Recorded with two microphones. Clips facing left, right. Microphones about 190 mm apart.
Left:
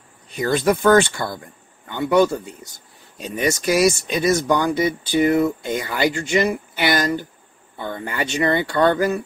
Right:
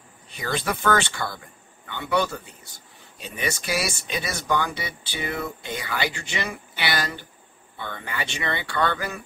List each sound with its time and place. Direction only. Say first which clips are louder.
0.3 s speech: left 9 dB; 45° left (ahead or behind)